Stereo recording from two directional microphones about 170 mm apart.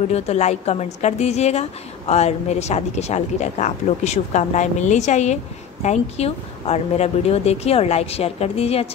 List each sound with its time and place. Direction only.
0.1 s a woman's voice: 40° left (ahead or behind)